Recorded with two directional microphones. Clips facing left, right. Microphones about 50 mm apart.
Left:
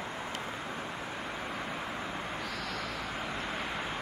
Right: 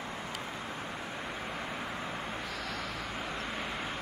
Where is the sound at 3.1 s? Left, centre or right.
Centre.